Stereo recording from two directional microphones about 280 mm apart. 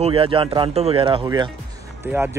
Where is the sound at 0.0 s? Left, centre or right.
Centre.